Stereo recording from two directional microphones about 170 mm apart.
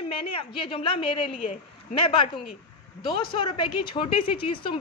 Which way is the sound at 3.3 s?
30° left (ahead or behind).